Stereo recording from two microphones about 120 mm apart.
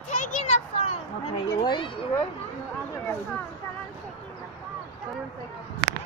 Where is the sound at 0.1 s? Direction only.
90° left; by 0.9 s 70° left (ahead or behind).